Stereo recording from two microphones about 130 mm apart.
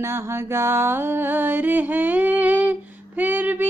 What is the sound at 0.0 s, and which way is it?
Music, 20° right (ahead or behind).